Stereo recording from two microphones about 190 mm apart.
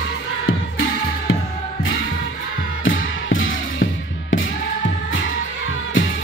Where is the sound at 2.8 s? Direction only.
90° left.